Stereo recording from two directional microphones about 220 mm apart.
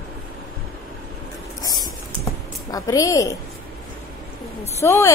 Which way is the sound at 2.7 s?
15° left (ahead or behind).